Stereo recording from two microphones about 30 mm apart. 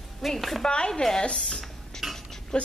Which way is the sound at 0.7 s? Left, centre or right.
Left.